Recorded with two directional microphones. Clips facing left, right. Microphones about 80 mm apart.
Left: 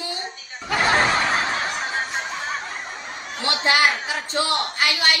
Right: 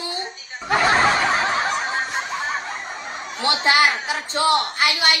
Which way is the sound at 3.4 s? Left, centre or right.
Right.